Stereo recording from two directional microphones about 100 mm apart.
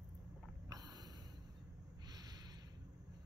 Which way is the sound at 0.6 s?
40° right (ahead or behind).